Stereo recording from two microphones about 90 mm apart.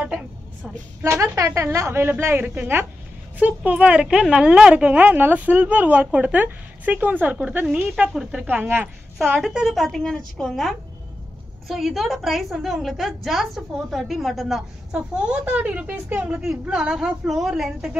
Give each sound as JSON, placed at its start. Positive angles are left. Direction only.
{"t": 1.0, "sound": "a woman's voice", "side_deg": -30}
{"t": 8.5, "sound": "a woman's voice", "side_deg": -20}
{"t": 9.4, "sound": "a woman's voice", "side_deg": -5}
{"t": 14.9, "sound": "a woman's voice", "side_deg": -10}